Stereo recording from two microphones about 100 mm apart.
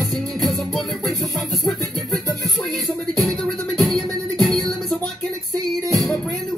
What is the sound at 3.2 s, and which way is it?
Music, centre (ahead or behind).